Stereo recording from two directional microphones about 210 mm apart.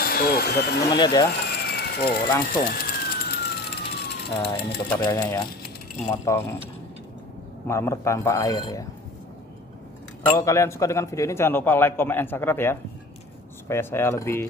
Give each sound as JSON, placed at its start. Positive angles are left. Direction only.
{"t": 0.0, "sound": "speech", "side_deg": 45}
{"t": 0.8, "sound": "speech", "side_deg": 20}
{"t": 1.4, "sound": "a sound", "side_deg": 50}
{"t": 2.4, "sound": "vehicle", "side_deg": 45}
{"t": 5.0, "sound": "a man's voice", "side_deg": 15}
{"t": 7.6, "sound": "a man's voice", "side_deg": 10}
{"t": 10.2, "sound": "a man's voice", "side_deg": 15}